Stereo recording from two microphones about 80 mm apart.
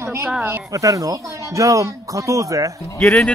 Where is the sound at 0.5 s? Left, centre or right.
Right.